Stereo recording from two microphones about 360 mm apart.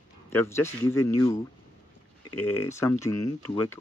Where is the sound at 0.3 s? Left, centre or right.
Centre.